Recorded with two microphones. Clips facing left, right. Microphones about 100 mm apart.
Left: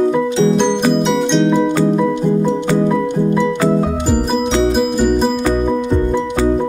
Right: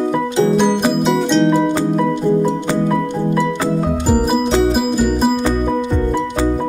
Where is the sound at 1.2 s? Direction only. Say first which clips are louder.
Right 1 dB; 5° right (ahead or behind).